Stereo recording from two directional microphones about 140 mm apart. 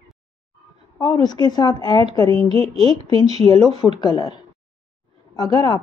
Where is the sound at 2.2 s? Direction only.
40° right (ahead or behind).